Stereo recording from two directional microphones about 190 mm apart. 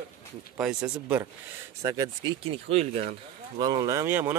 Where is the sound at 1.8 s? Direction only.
20° right (ahead or behind).